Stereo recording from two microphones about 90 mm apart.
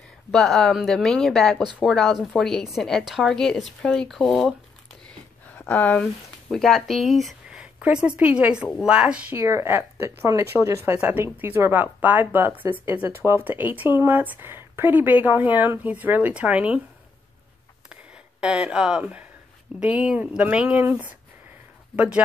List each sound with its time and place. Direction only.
0.3 s a woman's voice: 5° left (ahead or behind)
5.6 s speech: 20° left (ahead or behind)
6.5 s speech: 5° left (ahead or behind)
7.8 s speech: 15° right (ahead or behind)
9.4 s speech: 30° right (ahead or behind); by 16.8 s 15° right (ahead or behind)
18.4 s speech: 10° right (ahead or behind)
21.9 s speech: 15° right (ahead or behind)